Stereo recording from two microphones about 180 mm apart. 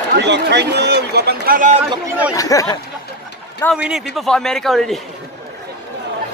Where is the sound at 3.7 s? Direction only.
5° right (ahead or behind).